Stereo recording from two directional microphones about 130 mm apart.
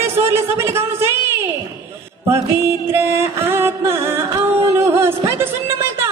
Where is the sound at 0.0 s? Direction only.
20° right (ahead or behind).